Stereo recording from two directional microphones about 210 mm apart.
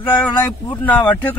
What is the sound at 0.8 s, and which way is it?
Speech, 5° left (ahead or behind).